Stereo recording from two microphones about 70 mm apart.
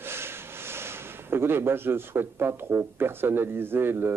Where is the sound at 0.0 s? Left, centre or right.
Right.